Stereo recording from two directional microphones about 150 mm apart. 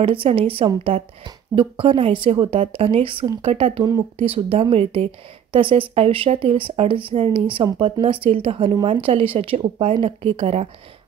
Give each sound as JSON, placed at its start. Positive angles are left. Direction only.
{"t": 0.0, "sound": "a woman's voice", "side_deg": -35}